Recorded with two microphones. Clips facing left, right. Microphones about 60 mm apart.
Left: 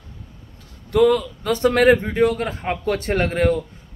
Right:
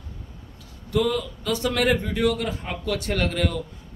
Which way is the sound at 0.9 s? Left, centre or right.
Left.